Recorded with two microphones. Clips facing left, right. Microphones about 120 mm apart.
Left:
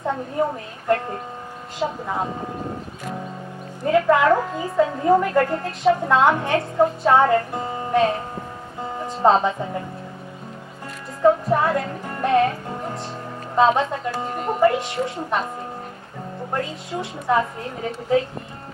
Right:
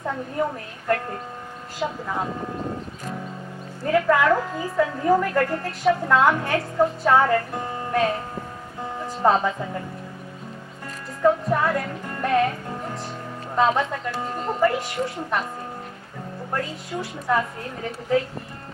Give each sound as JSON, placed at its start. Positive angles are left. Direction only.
{"t": 0.0, "sound": "a woman's voice", "side_deg": 25}
{"t": 3.8, "sound": "a woman's voice", "side_deg": 20}
{"t": 11.5, "sound": "a woman's voice", "side_deg": 25}
{"t": 13.6, "sound": "a woman's voice", "side_deg": 25}
{"t": 14.3, "sound": "speech", "side_deg": 15}
{"t": 14.8, "sound": "a woman's voice", "side_deg": 25}
{"t": 16.5, "sound": "a woman's voice", "side_deg": 25}